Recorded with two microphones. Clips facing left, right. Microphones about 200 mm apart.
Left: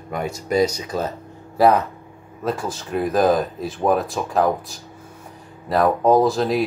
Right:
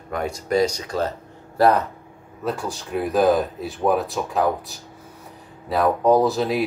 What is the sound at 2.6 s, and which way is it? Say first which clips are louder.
Speech: left 2 dB; centre (ahead or behind).